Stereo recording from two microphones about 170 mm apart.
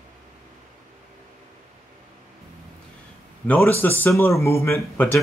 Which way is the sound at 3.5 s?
10° left (ahead or behind).